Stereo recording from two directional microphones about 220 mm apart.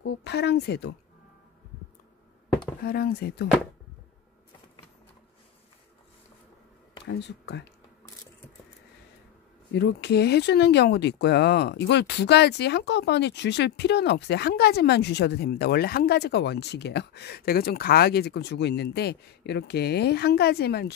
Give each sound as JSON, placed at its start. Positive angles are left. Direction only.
{"t": 0.0, "sound": "speech", "side_deg": 50}
{"t": 2.8, "sound": "speech", "side_deg": 45}
{"t": 7.1, "sound": "speech", "side_deg": 50}
{"t": 9.7, "sound": "speech", "side_deg": 50}